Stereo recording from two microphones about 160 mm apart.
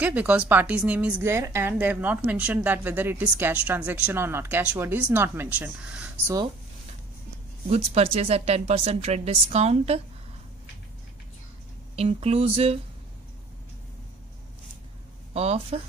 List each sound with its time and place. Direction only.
0.0 s a woman's voice: 10° right (ahead or behind)
7.6 s speech: 40° right (ahead or behind)
11.9 s speech: 40° right (ahead or behind)
15.3 s speech: 40° right (ahead or behind)